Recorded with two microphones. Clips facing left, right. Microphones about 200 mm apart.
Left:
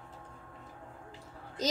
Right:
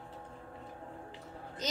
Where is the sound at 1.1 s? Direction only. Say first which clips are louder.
Right 2 dB; 35° left (ahead or behind).